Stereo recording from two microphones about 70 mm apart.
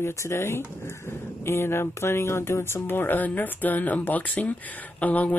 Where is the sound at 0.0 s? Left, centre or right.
Left.